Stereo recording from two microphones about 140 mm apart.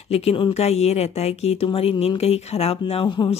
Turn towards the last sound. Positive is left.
turn(degrees=35)  # may be behind; listen again after turning